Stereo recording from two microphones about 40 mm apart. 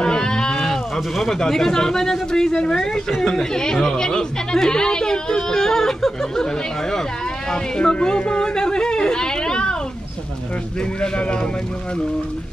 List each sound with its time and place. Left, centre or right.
0.0 s a sound: centre
0.6 s speech: centre
11.0 s speech: left